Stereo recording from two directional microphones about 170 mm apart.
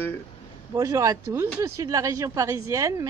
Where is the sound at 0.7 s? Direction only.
20° right (ahead or behind).